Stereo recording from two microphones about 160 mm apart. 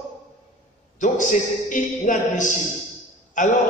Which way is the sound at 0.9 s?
50° left (ahead or behind).